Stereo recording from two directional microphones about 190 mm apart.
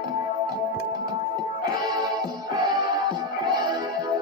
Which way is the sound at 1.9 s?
20° right (ahead or behind).